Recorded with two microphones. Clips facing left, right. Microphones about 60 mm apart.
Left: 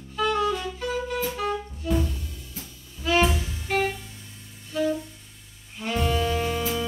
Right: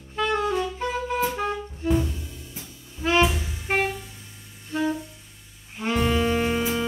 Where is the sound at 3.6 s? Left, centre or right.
Right.